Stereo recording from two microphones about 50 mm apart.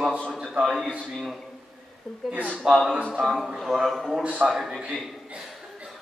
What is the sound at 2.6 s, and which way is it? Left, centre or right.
Speech, centre.